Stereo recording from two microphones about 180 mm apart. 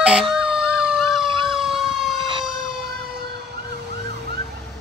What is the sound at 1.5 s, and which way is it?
Emergency vehicle, centre (ahead or behind).